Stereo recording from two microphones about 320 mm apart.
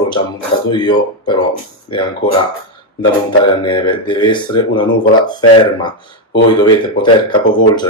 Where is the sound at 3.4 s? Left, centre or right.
Centre.